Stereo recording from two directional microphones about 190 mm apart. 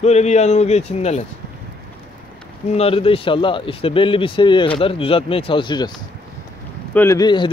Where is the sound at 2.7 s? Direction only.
30° left (ahead or behind).